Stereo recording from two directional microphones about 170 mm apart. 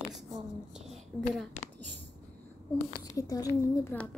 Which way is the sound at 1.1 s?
10° left (ahead or behind).